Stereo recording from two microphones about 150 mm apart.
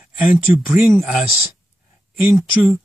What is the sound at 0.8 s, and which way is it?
Speech, 5° right (ahead or behind).